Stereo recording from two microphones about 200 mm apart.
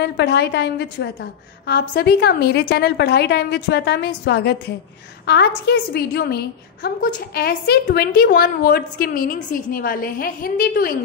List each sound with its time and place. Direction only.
0.0 s a woman's voice: 55° left (ahead or behind)